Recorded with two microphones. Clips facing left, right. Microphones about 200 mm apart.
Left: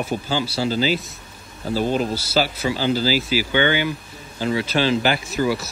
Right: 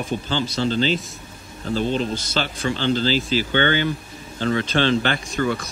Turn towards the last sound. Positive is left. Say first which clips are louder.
# left 1 dB
turn(degrees=5)  # may be behind; listen again after turning